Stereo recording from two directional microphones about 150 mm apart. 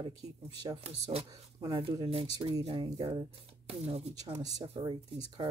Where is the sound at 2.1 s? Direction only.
40° right (ahead or behind).